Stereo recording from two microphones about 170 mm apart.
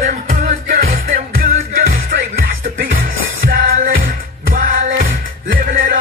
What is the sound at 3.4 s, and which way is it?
Music, 55° right (ahead or behind).